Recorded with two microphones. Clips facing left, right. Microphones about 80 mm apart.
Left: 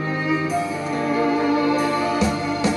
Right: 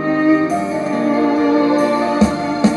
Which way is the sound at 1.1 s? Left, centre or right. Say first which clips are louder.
Right 5 dB; right.